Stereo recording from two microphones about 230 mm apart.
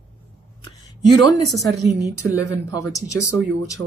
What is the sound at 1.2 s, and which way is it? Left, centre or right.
Speech, centre.